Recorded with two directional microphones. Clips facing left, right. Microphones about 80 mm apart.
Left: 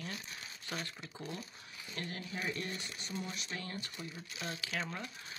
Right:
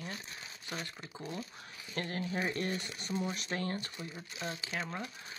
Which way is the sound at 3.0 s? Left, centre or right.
Right.